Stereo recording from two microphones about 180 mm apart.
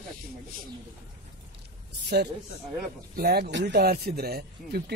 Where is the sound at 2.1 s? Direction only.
65° right (ahead or behind).